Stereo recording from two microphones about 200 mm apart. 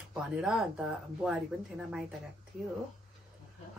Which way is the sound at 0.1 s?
5° right (ahead or behind).